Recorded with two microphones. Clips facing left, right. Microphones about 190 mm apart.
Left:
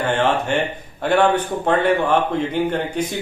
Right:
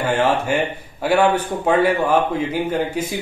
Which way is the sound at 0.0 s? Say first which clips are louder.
Right 1 dB; 10° right (ahead or behind).